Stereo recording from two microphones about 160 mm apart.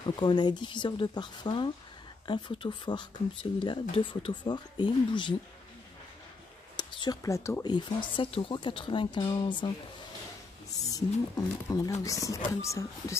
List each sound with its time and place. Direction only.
0.1 s speech: 25° left (ahead or behind)
6.8 s speech: 25° left (ahead or behind)
10.9 s speech: 20° left (ahead or behind)